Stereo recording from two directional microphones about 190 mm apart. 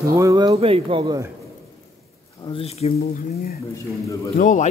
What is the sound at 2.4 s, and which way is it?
Speech, 30° left (ahead or behind).